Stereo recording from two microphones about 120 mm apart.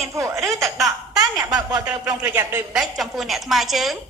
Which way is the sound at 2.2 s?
20° right (ahead or behind).